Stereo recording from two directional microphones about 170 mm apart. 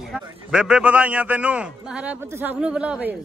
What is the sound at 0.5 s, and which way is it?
A man's voice, 5° right (ahead or behind).